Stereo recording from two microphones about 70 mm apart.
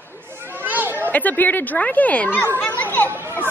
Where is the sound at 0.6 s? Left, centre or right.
Right.